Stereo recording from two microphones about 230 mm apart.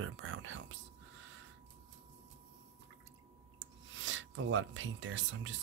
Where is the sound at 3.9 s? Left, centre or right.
Right.